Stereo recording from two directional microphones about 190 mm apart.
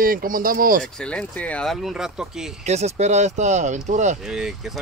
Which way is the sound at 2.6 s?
35° right (ahead or behind).